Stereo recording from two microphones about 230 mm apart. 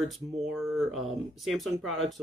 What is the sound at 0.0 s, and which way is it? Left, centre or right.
Speech, centre.